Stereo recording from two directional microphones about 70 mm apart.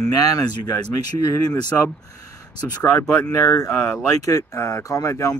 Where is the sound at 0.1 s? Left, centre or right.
Left.